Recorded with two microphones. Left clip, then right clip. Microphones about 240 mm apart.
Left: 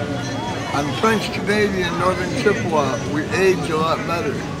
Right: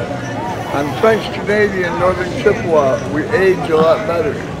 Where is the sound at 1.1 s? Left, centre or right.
Left.